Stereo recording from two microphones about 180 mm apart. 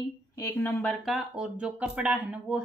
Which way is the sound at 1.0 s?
5° right (ahead or behind).